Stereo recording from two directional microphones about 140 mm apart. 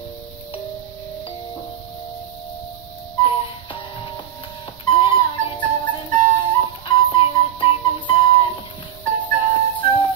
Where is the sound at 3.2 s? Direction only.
35° left (ahead or behind).